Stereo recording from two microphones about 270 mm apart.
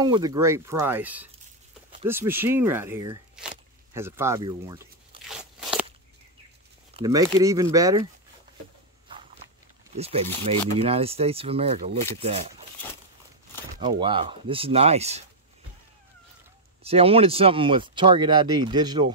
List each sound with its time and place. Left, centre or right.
0.0 s speech: centre
4.5 s a sound: centre
5.3 s crunch: centre
7.0 s speech: centre
9.9 s speech: right
13.7 s speech: centre
16.8 s speech: right